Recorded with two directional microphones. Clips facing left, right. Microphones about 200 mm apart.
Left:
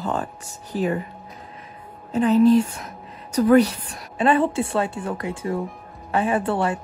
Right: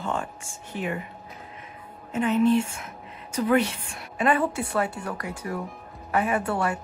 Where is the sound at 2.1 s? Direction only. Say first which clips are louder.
Left 6 dB; 35° left (ahead or behind).